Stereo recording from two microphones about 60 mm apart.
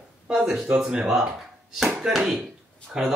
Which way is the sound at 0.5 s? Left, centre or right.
Centre.